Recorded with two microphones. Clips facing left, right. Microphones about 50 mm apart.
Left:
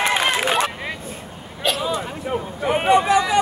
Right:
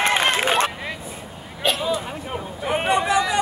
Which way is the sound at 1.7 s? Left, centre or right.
Centre.